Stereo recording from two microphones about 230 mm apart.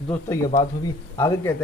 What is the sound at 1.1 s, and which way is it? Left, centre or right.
Speech, centre.